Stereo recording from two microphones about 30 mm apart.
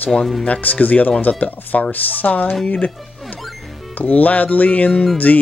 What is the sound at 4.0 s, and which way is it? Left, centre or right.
Speech, left.